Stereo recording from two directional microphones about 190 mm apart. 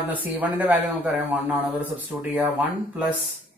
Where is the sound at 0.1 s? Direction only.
10° right (ahead or behind).